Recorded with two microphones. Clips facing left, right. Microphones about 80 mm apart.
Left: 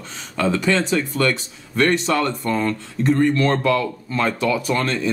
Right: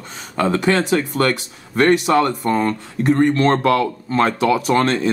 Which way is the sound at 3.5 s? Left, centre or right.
Right.